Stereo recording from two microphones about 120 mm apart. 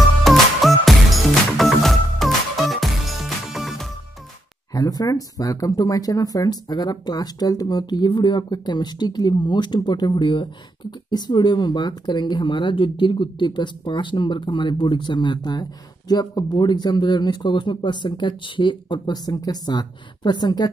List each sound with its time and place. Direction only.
0.2 s music: centre (ahead or behind)
4.7 s speech: 30° left (ahead or behind)